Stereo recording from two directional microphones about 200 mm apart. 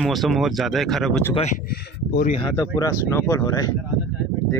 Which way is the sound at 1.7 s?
50° left (ahead or behind).